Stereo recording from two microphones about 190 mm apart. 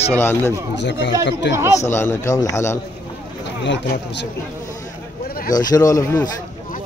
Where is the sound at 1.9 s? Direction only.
15° left (ahead or behind).